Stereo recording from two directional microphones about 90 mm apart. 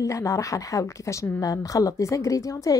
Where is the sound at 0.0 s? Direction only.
35° left (ahead or behind).